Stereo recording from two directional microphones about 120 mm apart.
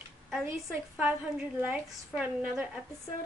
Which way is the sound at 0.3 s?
Centre (ahead or behind).